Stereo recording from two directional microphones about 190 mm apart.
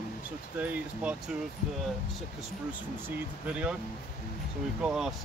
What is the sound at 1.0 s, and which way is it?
Speech, 5° right (ahead or behind).